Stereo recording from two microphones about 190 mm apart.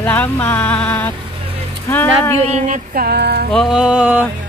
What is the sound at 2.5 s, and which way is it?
Music, 45° right (ahead or behind).